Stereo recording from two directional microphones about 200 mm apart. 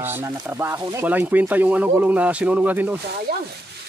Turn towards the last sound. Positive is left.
turn(degrees=-45)  # may be behind; listen again after turning